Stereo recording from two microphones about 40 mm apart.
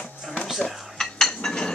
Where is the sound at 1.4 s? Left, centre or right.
Centre.